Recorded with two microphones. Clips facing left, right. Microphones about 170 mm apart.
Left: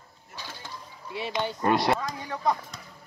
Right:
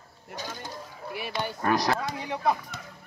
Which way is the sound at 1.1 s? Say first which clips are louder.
Left 3 dB; 25° left (ahead or behind).